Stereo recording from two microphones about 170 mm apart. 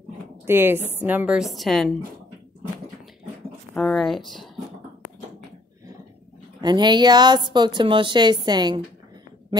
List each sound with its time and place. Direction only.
0.5 s a woman's voice: 15° right (ahead or behind)
3.7 s a woman's voice: 5° left (ahead or behind)
6.6 s speech: 25° right (ahead or behind)